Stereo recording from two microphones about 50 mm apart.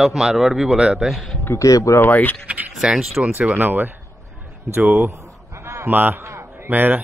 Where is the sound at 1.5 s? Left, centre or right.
Left.